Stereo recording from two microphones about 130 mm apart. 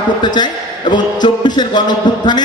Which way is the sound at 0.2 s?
35° left (ahead or behind).